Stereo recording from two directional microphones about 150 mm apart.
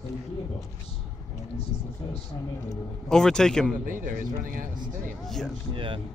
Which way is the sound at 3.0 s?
5° left (ahead or behind).